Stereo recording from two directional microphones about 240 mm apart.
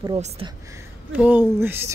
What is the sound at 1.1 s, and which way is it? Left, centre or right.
Speech, centre.